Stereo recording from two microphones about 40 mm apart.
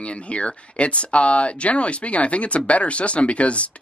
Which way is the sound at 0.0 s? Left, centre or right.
Left.